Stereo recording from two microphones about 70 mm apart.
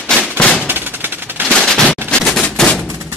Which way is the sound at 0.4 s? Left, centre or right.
Centre.